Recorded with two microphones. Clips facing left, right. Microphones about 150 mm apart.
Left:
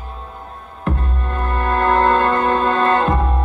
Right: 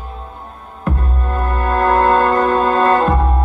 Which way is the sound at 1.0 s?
35° right (ahead or behind).